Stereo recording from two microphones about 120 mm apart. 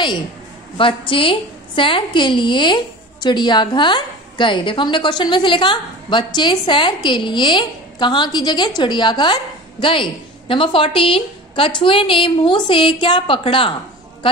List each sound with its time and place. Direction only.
0.7 s a woman's voice: 45° left (ahead or behind)